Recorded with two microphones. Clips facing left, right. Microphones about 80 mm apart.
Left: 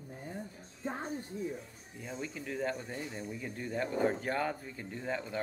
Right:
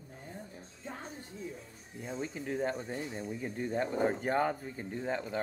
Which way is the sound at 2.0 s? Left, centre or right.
Right.